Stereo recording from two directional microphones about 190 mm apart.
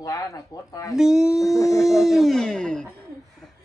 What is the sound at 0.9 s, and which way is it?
Speech, 5° right (ahead or behind).